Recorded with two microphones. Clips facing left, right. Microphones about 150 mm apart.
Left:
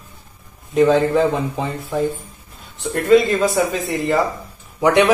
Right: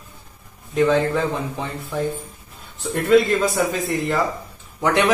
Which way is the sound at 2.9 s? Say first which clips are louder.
Left 2 dB; centre (ahead or behind).